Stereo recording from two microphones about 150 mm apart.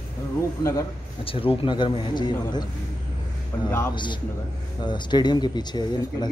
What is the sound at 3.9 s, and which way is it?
A man's voice, 30° left (ahead or behind).